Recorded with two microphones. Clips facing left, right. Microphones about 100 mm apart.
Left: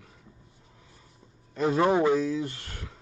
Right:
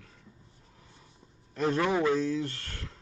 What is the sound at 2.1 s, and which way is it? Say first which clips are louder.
Speech: left 2 dB; 10° left (ahead or behind).